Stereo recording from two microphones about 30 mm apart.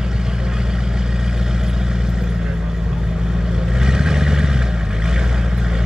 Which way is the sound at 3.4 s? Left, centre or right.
Right.